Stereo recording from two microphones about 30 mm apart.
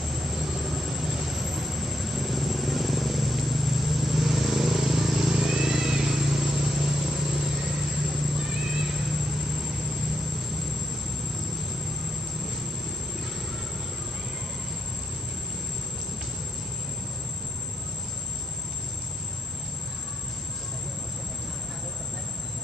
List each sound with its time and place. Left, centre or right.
0.1 s vehicle: centre
8.2 s music: centre